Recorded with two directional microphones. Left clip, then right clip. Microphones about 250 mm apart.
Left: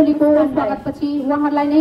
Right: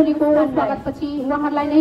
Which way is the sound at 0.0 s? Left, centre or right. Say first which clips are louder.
Left 2 dB; left.